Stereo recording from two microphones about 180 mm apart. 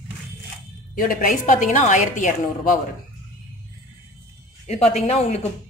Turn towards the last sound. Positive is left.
turn(degrees=35)  # may be behind; listen again after turning